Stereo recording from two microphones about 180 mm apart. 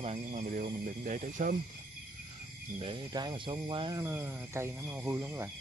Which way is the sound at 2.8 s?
25° right (ahead or behind).